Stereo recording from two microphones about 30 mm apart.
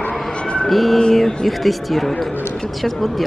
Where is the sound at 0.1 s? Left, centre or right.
Left.